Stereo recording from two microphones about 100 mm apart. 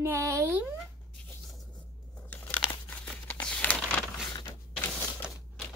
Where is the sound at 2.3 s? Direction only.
15° left (ahead or behind).